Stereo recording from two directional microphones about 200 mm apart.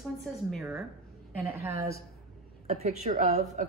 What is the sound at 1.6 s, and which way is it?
Speech, 15° right (ahead or behind).